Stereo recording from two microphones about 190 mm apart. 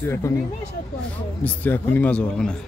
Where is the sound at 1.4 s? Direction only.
10° left (ahead or behind).